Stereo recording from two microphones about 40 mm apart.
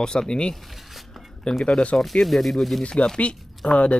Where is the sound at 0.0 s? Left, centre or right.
Centre.